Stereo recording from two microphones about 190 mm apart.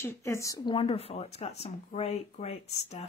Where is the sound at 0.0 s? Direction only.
15° left (ahead or behind).